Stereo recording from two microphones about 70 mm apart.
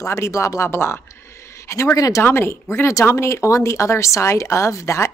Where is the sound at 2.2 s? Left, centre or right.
Left.